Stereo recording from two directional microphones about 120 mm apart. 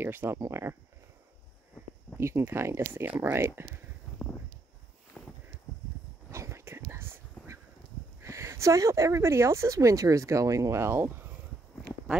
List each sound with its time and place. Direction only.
0.0 s speech: 15° right (ahead or behind)
2.1 s speech: 20° right (ahead or behind)
5.2 s a sound: 15° left (ahead or behind)
6.3 s whispering: 25° right (ahead or behind)
8.2 s speech: 25° right (ahead or behind)